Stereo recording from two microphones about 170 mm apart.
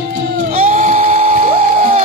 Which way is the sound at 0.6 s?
45° right (ahead or behind).